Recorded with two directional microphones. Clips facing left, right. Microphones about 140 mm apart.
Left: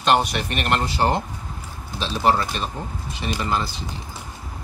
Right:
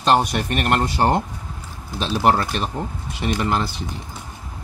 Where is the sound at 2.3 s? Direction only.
55° right (ahead or behind).